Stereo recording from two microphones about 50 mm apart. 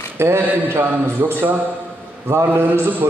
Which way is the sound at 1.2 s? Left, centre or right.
Right.